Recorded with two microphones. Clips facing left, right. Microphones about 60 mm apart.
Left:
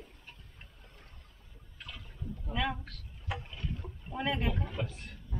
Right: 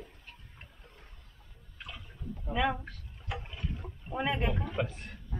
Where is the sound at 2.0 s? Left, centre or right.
Centre.